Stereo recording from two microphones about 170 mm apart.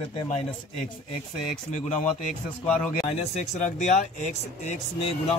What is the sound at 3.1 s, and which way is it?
A man's voice, 40° left (ahead or behind).